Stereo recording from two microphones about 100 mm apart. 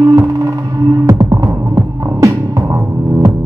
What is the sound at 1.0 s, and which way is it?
Music, 35° right (ahead or behind).